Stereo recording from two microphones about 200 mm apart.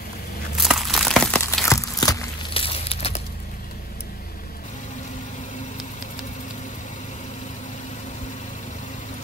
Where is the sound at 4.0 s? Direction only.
45° left (ahead or behind).